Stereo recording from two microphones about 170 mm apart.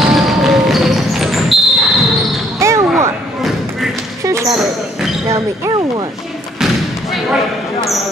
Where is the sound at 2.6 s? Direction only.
15° right (ahead or behind).